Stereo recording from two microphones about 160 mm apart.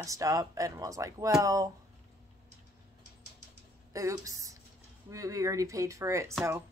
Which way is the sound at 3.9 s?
20° right (ahead or behind).